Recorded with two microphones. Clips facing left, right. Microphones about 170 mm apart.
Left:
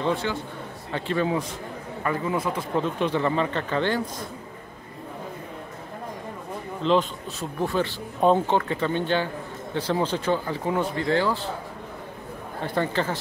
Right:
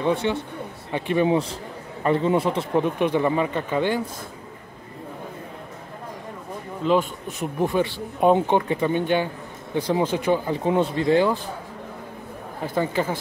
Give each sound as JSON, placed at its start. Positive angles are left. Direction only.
{"t": 0.0, "sound": "a man's voice", "side_deg": -20}
{"t": 2.7, "sound": "speech", "side_deg": -15}
{"t": 6.8, "sound": "speech", "side_deg": -10}
{"t": 12.6, "sound": "speech", "side_deg": -10}